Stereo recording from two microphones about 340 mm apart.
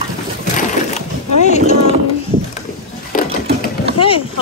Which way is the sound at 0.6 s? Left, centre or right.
Left.